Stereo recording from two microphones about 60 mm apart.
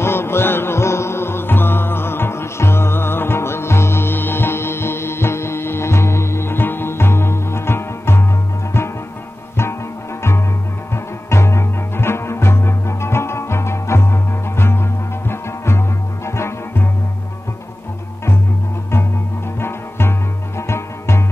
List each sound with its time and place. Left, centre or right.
0.0 s music: left
11.2 s music: left
19.6 s music: left